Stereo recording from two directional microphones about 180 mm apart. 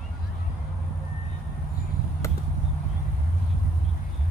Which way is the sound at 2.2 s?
15° left (ahead or behind).